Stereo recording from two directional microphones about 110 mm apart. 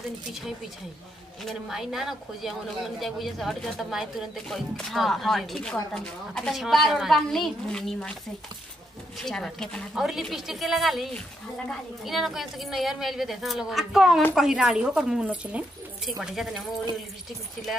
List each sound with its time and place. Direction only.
0.3 s speech: centre (ahead or behind)
9.2 s speech: 5° left (ahead or behind)